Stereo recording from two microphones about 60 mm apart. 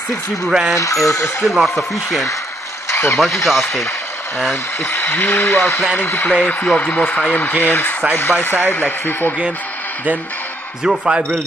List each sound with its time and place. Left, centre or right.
0.5 s speech: centre
0.7 s speech: left
1.4 s speech: centre
2.9 s a sound: left
3.4 s speech: centre
4.8 s speech: left
6.8 s speech: left
10.8 s speech: centre